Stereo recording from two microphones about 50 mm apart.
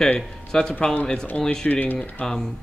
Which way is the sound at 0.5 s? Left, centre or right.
Centre.